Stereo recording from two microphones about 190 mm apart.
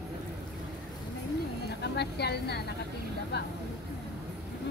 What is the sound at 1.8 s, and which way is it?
Speech, 60° left (ahead or behind).